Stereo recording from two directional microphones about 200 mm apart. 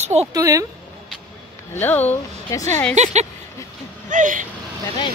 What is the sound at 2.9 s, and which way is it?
Speech, 35° right (ahead or behind).